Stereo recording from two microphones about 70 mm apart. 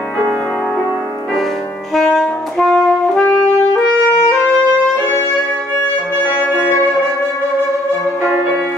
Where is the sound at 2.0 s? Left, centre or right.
Centre.